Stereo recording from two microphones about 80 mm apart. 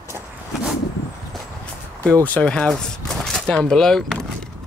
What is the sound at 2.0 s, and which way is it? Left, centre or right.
Speech, centre.